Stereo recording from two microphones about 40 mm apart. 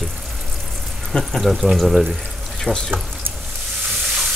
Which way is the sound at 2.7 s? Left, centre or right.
Left.